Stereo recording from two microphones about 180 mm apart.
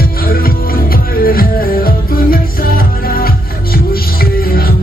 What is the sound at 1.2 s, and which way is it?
Music, 55° left (ahead or behind).